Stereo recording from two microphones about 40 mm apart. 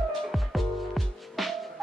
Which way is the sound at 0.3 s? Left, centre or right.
Centre.